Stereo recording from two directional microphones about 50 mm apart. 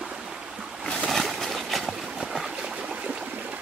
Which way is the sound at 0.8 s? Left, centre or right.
Centre.